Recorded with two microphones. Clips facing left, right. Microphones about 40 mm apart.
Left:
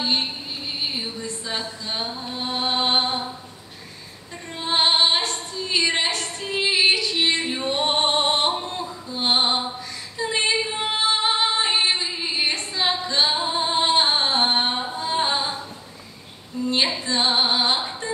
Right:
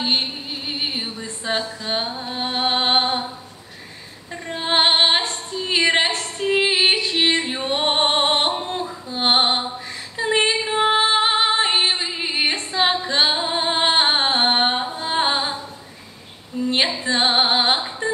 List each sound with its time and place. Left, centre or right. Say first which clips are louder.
0.0 s music: right 2 dB; right
0.9 s female singing: right 2 dB; centre
1.2 s music: right 4 dB; right
4.5 s female singing: right 3 dB; right
7.6 s music: right 2 dB; right
10.1 s female singing: right 3 dB; right
13.0 s singing: right 2 dB; right
13.6 s music: right 1 dB; right
16.5 s a sound: right 3 dB; right
17.0 s music: right 3 dB; right